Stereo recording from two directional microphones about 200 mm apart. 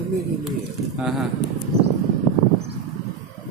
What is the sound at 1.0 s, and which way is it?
Speech, centre (ahead or behind).